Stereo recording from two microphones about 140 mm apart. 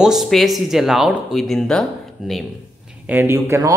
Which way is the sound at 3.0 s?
15° right (ahead or behind).